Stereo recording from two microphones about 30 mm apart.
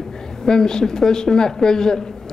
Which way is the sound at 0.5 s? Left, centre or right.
Left.